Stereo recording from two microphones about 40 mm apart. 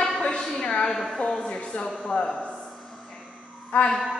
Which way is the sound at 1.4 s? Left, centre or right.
Left.